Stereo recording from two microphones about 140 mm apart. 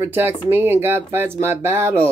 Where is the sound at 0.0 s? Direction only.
15° right (ahead or behind).